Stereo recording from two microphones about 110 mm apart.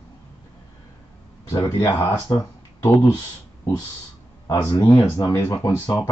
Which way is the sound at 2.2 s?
30° left (ahead or behind).